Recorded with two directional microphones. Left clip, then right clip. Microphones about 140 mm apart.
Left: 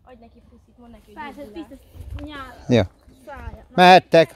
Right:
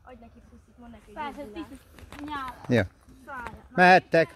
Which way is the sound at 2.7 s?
45° left (ahead or behind).